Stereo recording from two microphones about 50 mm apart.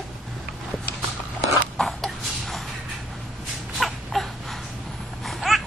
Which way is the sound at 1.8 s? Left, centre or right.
Centre.